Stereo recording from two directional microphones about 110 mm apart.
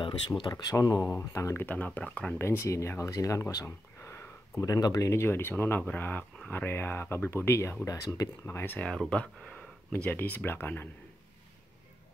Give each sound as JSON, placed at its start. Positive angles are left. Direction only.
{"t": 0.4, "sound": "speech", "side_deg": 40}
{"t": 1.1, "sound": "speech", "side_deg": 25}